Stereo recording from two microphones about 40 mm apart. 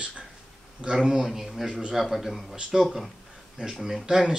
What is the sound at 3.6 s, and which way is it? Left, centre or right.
Speech, centre.